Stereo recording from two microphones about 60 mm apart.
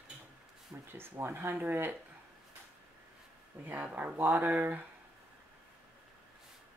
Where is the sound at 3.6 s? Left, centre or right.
Right.